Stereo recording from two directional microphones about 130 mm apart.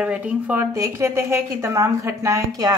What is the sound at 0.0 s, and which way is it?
Speech, 10° right (ahead or behind).